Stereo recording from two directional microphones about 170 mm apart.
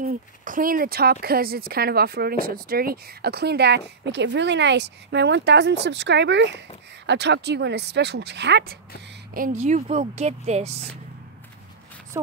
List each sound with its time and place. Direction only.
0.0 s speech: 55° right (ahead or behind); by 8.7 s 85° right
9.3 s speech: 50° right (ahead or behind)